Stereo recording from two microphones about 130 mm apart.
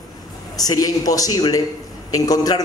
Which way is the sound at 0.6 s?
30° left (ahead or behind).